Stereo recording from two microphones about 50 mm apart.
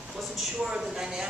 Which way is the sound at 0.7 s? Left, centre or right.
Centre.